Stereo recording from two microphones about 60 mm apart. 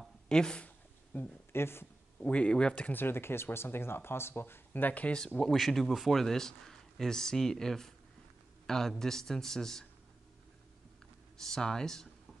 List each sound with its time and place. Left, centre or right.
0.3 s a man's voice: centre
0.7 s a sound: left
1.5 s speech: left
2.1 s speech: left
2.9 s speech: left
5.4 s a man's voice: centre
11.3 s a man's voice: centre